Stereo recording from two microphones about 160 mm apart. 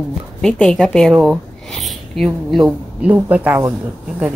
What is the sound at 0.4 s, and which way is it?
A woman's voice, 5° left (ahead or behind).